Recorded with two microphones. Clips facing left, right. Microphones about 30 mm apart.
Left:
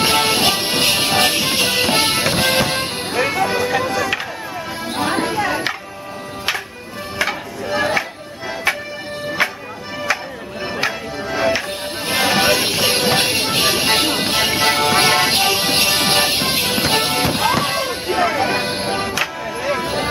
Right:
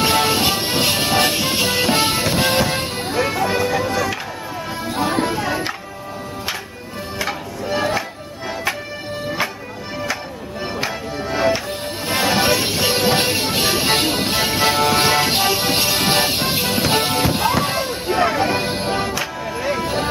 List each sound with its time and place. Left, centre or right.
0.0 s music: centre
4.9 s music: centre
7.6 s music: centre
8.7 s music: centre
10.8 s music: centre
18.1 s music: centre